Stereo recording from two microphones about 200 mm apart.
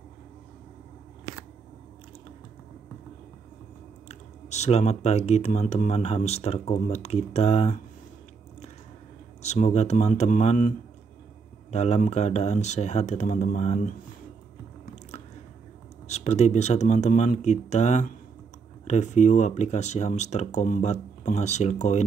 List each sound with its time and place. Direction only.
4.1 s speech: 35° left (ahead or behind)
9.4 s speech: 35° left (ahead or behind)
11.7 s speech: 35° left (ahead or behind)
16.1 s speech: 30° left (ahead or behind)